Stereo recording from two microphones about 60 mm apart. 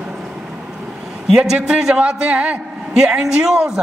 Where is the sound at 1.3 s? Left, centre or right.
Centre.